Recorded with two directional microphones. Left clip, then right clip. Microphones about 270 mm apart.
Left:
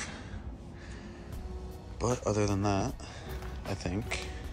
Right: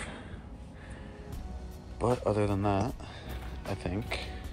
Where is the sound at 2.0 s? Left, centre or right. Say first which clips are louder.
Right 2 dB; centre.